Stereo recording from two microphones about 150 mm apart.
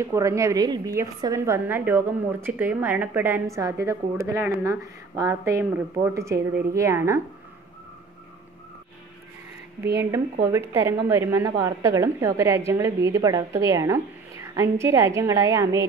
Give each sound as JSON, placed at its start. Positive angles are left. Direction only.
{"t": 0.0, "sound": "a woman's voice", "side_deg": -20}
{"t": 10.4, "sound": "a woman's voice", "side_deg": -15}